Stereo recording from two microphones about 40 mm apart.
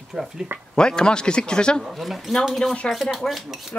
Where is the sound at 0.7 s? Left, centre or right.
Left.